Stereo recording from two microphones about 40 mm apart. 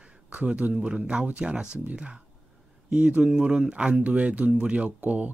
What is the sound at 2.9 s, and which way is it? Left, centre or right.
Speech, right.